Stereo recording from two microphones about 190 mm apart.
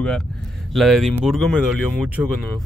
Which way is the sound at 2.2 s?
10° right (ahead or behind).